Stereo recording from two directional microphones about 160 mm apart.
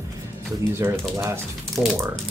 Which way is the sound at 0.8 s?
15° right (ahead or behind).